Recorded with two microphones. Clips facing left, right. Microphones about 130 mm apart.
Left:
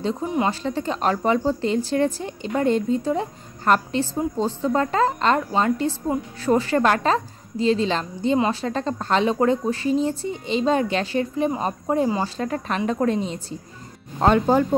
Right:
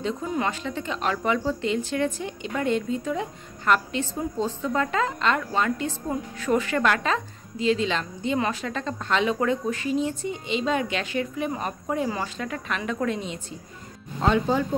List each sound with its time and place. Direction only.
0.5 s a woman's voice: 35° left (ahead or behind)
14.2 s speech: 50° left (ahead or behind)